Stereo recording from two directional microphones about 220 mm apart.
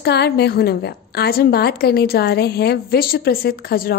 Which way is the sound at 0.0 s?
50° left (ahead or behind).